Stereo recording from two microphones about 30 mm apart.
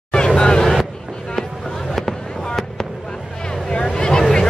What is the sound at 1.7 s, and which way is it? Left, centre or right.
Fireworks, centre.